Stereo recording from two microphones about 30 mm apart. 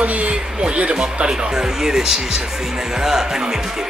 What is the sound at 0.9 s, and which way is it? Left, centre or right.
Speech, right.